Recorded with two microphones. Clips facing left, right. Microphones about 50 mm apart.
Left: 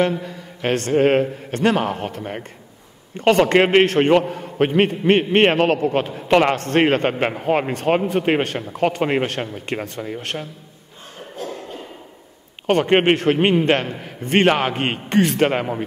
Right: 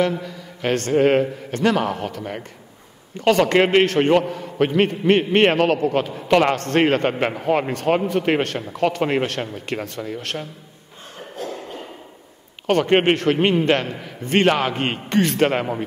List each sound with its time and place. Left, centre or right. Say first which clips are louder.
0.6 s a man's voice: even; centre
1.6 s speech: left 1 dB; left
3.3 s a man's voice: left 2 dB; centre
4.3 s a man's voice: left 1 dB; left
4.6 s a man's voice: left 1 dB; centre
12.6 s a man's voice: left 1 dB; centre